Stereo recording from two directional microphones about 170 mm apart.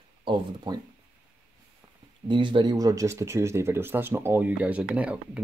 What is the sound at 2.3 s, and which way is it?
Speech, 30° right (ahead or behind).